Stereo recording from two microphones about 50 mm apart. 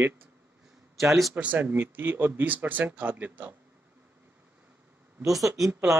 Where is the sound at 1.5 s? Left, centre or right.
Right.